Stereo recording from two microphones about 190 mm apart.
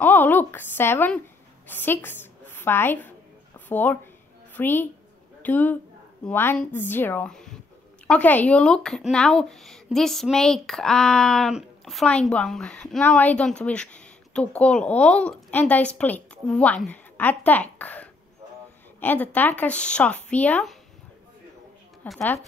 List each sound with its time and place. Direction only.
0.0 s speech: 10° left (ahead or behind)
1.7 s a sound: 10° left (ahead or behind)
4.6 s a woman's voice: 10° left (ahead or behind)
22.0 s speech: 10° left (ahead or behind)